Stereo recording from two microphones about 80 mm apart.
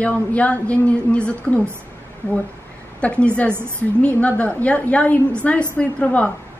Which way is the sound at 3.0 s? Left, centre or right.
Centre.